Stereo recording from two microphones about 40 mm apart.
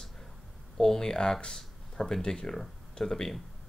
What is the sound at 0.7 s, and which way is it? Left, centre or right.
Speech, centre.